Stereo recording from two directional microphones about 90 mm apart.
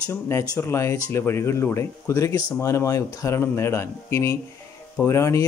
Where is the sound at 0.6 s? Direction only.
30° left (ahead or behind).